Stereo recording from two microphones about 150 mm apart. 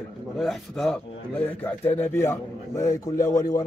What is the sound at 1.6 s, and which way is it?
A man's voice, 10° left (ahead or behind).